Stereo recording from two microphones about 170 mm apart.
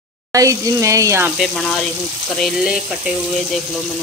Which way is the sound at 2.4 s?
Centre (ahead or behind).